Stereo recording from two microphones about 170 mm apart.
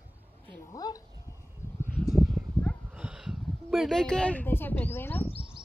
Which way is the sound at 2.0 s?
Centre (ahead or behind).